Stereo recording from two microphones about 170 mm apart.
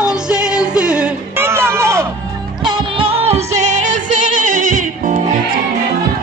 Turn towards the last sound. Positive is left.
turn(degrees=-50)  # may be behind; listen again after turning